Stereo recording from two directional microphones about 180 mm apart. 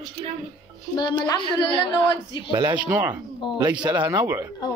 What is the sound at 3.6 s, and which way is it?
Speech, 25° right (ahead or behind).